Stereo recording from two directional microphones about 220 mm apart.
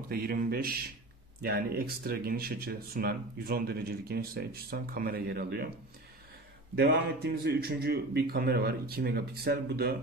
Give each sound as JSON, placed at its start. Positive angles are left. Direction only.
{"t": 0.1, "sound": "speech", "side_deg": -40}
{"t": 6.7, "sound": "speech", "side_deg": -45}